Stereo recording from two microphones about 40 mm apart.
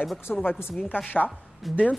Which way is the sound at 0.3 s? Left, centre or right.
Centre.